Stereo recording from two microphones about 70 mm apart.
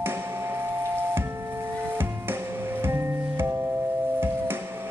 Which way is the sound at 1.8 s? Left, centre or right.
Right.